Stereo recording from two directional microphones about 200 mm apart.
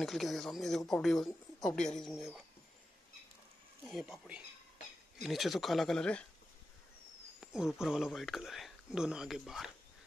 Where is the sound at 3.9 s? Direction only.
Centre (ahead or behind).